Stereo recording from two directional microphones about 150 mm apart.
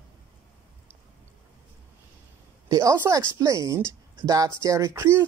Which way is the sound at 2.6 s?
25° right (ahead or behind).